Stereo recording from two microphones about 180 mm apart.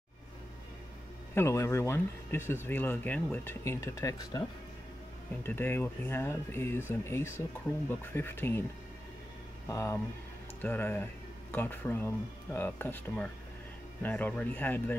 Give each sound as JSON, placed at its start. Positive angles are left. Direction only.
{"t": 1.3, "sound": "speech", "side_deg": 15}
{"t": 9.7, "sound": "speech", "side_deg": 15}